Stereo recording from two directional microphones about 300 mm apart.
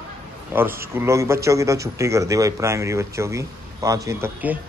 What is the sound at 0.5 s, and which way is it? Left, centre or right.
A man's voice, centre.